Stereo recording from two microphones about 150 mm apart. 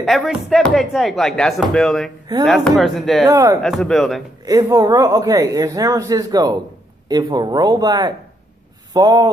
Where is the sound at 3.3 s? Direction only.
20° right (ahead or behind).